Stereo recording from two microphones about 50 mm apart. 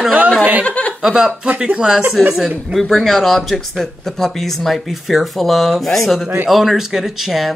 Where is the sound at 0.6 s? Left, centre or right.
Left.